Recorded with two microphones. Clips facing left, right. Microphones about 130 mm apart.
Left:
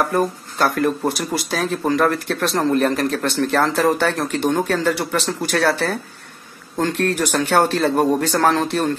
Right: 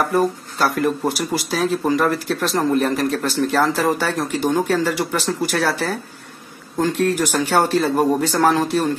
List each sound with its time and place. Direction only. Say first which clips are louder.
0.1 s speech: right 1 dB; centre (ahead or behind)